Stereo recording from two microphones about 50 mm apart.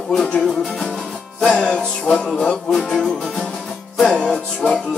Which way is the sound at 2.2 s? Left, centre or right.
Centre.